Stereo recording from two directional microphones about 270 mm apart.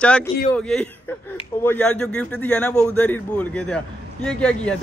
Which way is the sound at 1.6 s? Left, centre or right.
Centre.